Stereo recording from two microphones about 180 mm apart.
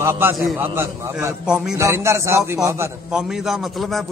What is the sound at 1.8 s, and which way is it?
A man's voice, 15° right (ahead or behind).